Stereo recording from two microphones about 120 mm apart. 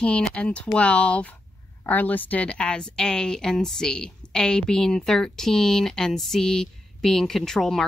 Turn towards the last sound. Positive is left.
turn(degrees=0)  # may be behind; listen again after turning